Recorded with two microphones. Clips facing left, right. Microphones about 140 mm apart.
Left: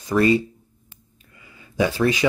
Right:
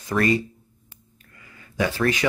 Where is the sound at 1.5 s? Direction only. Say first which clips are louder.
Left 3 dB; 20° left (ahead or behind).